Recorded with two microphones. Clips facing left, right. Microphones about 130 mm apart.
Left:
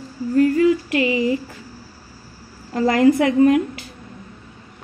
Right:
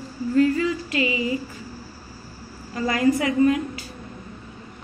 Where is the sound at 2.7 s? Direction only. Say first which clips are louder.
Left 6 dB; 55° left (ahead or behind).